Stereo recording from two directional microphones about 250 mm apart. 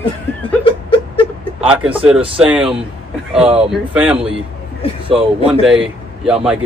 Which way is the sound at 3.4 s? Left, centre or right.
Right.